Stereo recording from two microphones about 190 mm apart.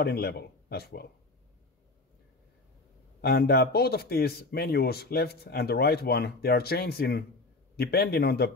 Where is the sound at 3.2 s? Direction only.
55° left (ahead or behind).